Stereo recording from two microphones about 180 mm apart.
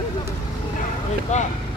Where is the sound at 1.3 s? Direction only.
40° left (ahead or behind).